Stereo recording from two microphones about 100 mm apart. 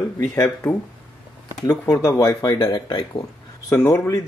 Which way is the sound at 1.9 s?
30° left (ahead or behind).